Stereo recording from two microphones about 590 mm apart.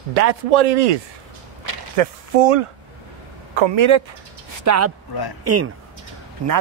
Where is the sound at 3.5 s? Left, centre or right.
Right.